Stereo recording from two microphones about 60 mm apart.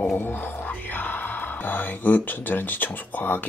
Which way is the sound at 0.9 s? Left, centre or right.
Left.